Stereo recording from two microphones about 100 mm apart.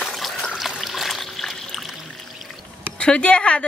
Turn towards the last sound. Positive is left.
turn(degrees=10)  # may be behind; listen again after turning